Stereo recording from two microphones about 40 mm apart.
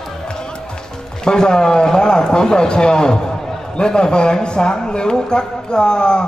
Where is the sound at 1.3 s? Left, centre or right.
Centre.